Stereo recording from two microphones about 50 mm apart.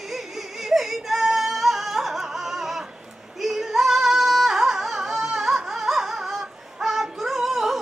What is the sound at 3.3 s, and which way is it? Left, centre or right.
Singing, centre.